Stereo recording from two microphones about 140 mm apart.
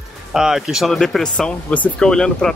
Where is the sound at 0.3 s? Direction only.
5° right (ahead or behind).